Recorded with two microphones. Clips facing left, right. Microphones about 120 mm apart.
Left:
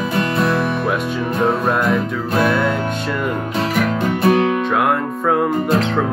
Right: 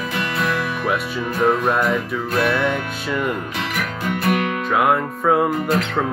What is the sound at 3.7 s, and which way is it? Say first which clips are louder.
Music: left 6 dB; 30° left (ahead or behind).